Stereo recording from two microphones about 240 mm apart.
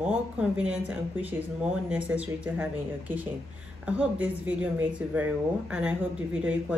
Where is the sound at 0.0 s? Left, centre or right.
Centre.